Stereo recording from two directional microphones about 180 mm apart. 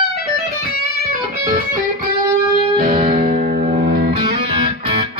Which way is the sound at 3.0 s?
35° right (ahead or behind).